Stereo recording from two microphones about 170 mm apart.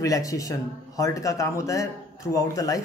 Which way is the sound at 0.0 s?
20° left (ahead or behind).